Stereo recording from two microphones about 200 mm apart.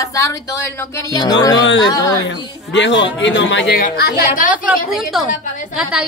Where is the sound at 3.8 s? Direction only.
50° left (ahead or behind).